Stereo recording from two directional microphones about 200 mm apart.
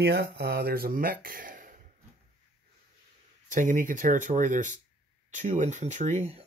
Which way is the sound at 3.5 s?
40° right (ahead or behind).